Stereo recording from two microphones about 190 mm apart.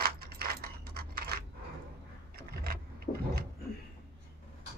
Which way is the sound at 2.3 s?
55° right (ahead or behind).